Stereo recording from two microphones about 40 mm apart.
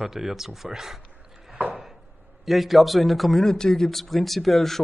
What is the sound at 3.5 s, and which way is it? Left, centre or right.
Speech, centre.